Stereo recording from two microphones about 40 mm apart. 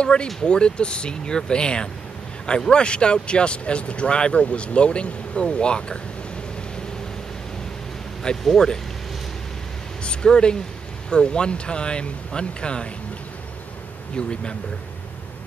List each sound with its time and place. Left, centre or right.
0.0 s speech: left
8.5 s speech: centre
10.0 s speech: left
14.1 s speech: left